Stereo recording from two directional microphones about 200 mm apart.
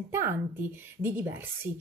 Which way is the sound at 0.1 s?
10° right (ahead or behind).